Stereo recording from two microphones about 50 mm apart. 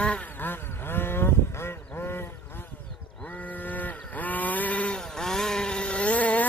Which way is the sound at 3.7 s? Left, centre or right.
Left.